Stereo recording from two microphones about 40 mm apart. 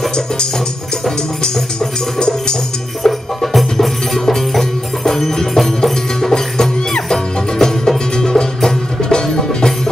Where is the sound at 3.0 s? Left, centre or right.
Centre.